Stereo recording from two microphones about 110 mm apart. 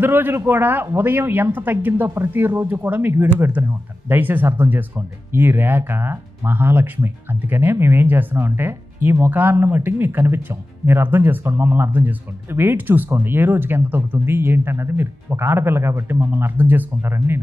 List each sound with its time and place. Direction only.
0.0 s a man's voice: 20° right (ahead or behind)